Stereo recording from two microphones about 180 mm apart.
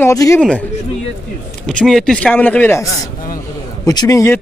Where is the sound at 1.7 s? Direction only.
5° left (ahead or behind).